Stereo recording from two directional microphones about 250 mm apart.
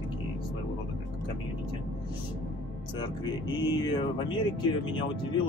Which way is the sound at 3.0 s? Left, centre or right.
Centre.